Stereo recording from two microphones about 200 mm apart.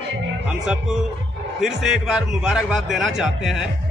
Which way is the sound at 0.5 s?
5° right (ahead or behind).